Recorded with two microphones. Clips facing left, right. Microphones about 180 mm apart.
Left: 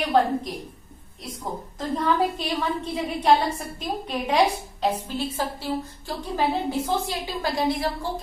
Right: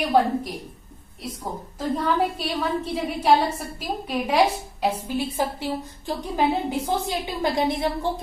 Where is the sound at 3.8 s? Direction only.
5° right (ahead or behind).